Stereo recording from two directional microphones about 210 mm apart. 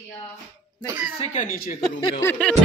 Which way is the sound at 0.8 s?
5° right (ahead or behind).